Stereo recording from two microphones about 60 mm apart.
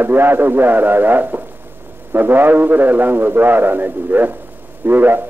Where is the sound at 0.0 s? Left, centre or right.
Right.